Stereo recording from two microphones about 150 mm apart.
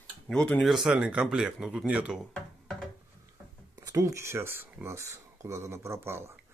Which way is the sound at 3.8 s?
25° right (ahead or behind).